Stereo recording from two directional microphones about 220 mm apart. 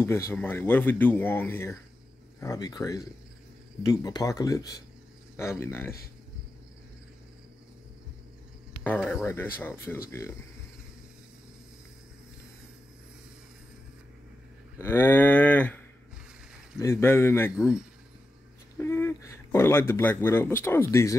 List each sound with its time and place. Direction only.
0.0 s speech: 10° left (ahead or behind)
9.2 s speech: 10° left (ahead or behind)
14.8 s speech: 10° left (ahead or behind)
18.8 s speech: 10° left (ahead or behind)